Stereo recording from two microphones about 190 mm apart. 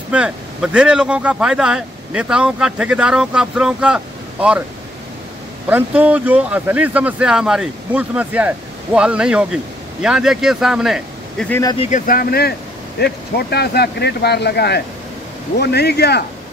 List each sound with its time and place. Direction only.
0.1 s speech: 5° right (ahead or behind)
5.7 s speech: 10° right (ahead or behind)
11.6 s speech: 30° left (ahead or behind)
11.9 s speech: 50° left (ahead or behind)